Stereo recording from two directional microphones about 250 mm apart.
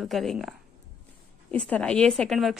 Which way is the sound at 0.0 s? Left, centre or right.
Centre.